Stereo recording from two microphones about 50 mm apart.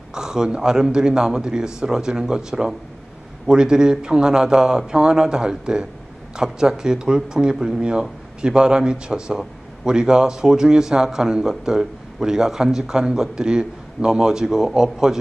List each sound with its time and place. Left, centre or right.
0.1 s a man's voice: centre